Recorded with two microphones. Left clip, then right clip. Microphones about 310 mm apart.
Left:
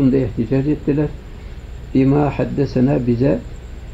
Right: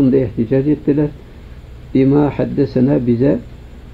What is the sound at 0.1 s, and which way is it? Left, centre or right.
Speech, centre.